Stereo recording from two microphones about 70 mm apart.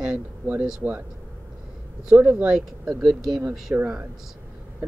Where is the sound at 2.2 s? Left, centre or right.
Right.